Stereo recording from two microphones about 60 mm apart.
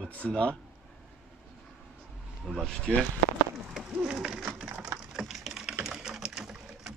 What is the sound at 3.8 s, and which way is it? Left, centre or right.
Speech, centre.